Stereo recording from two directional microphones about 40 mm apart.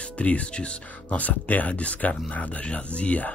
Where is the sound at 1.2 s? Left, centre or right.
Left.